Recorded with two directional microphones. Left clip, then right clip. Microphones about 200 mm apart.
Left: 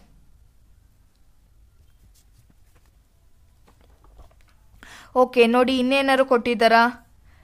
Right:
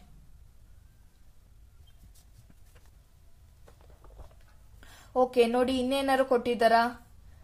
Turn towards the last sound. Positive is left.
turn(degrees=30)  # may be behind; listen again after turning